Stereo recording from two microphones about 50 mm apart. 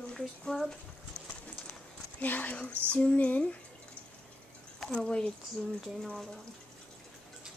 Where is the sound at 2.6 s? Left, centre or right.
Left.